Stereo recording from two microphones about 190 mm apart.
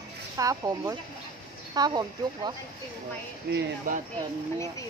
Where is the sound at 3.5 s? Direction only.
65° right (ahead or behind).